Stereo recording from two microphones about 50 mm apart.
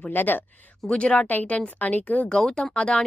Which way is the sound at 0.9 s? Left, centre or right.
Left.